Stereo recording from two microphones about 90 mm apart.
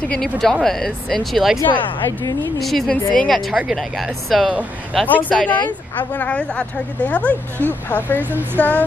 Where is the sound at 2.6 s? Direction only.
Centre (ahead or behind).